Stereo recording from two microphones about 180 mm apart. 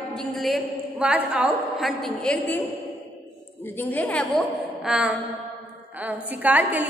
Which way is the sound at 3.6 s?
10° left (ahead or behind).